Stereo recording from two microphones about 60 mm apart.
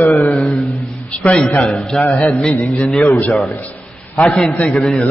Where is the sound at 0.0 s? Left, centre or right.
Left.